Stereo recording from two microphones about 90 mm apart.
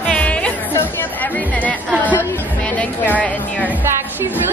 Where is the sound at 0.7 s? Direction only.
20° left (ahead or behind).